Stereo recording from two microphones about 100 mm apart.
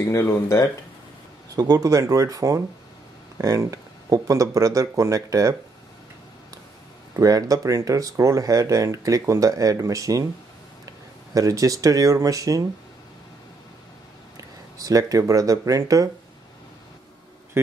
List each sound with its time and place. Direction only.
0.0 s speech: 30° left (ahead or behind)
1.5 s speech: 35° right (ahead or behind)
7.2 s speech: 35° right (ahead or behind)
11.3 s speech: 35° right (ahead or behind)
14.3 s speech: 35° right (ahead or behind)